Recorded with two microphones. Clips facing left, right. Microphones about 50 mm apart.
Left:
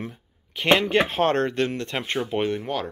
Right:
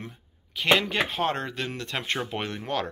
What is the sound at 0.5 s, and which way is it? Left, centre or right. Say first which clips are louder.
Speech: left 4 dB; left.